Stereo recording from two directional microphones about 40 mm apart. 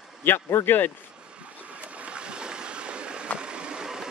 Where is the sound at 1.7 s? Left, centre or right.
Right.